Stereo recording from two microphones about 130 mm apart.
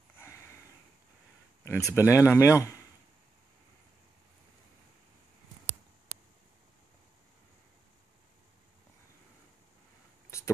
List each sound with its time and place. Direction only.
0.2 s sniff: 20° left (ahead or behind)
1.6 s speech: 25° left (ahead or behind)
10.3 s a sound: 20° left (ahead or behind)